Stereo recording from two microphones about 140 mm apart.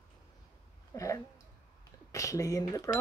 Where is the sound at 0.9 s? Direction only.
20° left (ahead or behind).